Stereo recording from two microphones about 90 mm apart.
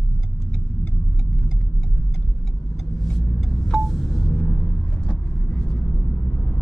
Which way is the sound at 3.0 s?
5° left (ahead or behind).